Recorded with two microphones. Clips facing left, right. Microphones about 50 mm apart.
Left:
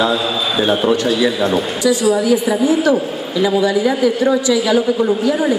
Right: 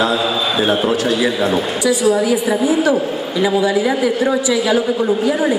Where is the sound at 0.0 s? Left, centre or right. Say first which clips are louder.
Even; centre.